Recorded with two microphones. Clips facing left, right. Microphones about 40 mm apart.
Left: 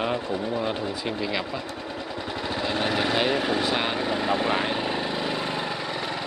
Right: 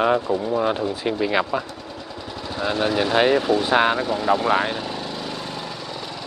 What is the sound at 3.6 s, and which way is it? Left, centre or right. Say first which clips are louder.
Speech: right 7 dB; centre.